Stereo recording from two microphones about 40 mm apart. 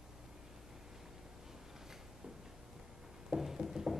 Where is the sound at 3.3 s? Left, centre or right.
Centre.